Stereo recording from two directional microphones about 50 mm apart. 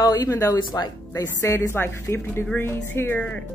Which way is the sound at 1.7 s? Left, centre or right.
Left.